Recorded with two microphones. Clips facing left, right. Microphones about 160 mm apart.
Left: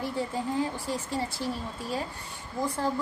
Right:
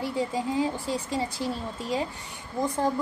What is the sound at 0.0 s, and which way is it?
A woman's voice, 15° right (ahead or behind).